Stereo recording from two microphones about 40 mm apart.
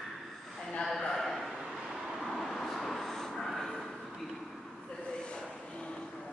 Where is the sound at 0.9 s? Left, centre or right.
Centre.